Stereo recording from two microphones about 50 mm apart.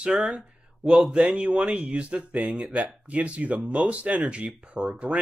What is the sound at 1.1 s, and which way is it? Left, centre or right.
Speech, right.